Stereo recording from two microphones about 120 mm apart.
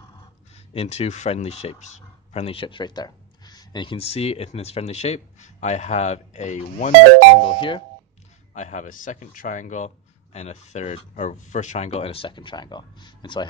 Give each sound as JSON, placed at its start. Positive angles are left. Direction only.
{"t": 0.7, "sound": "speech", "side_deg": 65}
{"t": 2.3, "sound": "speech", "side_deg": 50}
{"t": 7.4, "sound": "speech", "side_deg": 45}
{"t": 8.5, "sound": "a man's voice", "side_deg": 90}